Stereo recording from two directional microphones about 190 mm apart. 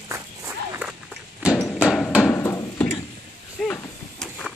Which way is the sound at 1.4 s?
Centre (ahead or behind).